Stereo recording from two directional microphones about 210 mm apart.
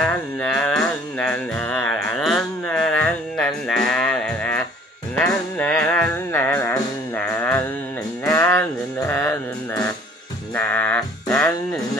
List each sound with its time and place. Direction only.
0.0 s music: 5° left (ahead or behind)